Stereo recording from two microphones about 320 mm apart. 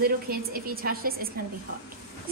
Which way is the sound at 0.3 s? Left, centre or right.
Right.